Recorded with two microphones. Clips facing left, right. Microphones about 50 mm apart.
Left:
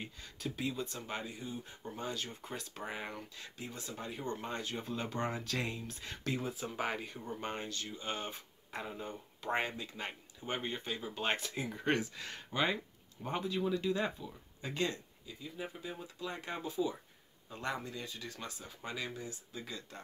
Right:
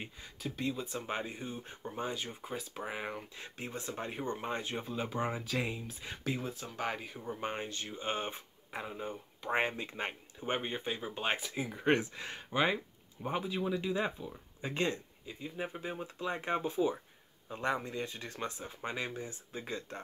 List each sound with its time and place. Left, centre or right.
0.4 s speech: centre
0.8 s speech: right
1.8 s speech: right
2.4 s speech: centre; by 4.3 s right
4.3 s speech: right
4.8 s speech: centre
6.5 s speech: centre; by 8.4 s right
8.7 s speech: centre
9.6 s speech: right
11.2 s speech: centre
11.8 s speech: right
17.5 s speech: right